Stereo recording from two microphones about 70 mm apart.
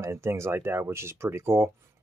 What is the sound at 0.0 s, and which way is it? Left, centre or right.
Speech, right.